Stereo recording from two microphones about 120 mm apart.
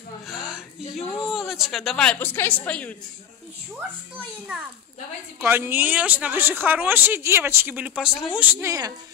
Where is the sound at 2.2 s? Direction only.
15° left (ahead or behind).